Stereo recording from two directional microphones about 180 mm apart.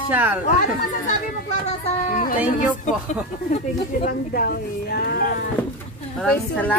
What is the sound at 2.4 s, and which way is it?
Speech, 10° right (ahead or behind).